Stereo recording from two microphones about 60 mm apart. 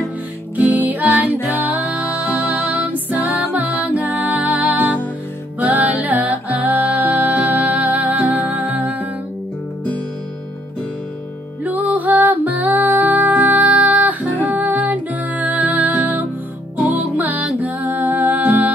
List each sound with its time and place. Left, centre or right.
0.6 s music: right
2.8 s music: right
11.7 s music: right